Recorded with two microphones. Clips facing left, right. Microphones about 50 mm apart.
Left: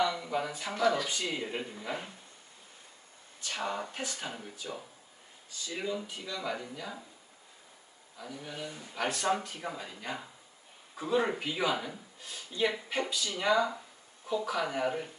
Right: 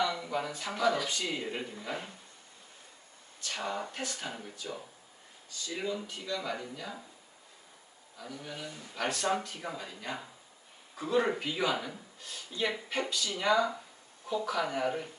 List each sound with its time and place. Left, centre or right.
0.0 s speech: centre
3.3 s speech: centre
8.2 s speech: centre